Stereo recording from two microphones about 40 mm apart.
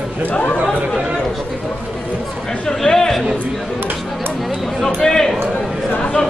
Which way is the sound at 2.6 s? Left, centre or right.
Centre.